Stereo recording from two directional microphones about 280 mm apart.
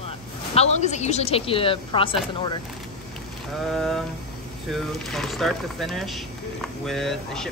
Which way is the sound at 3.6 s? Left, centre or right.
Centre.